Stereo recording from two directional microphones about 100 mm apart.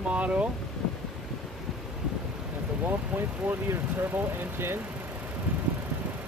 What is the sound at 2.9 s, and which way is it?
Speech, 20° right (ahead or behind).